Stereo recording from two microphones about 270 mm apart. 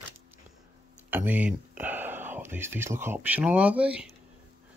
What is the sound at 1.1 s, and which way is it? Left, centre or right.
Speech, centre.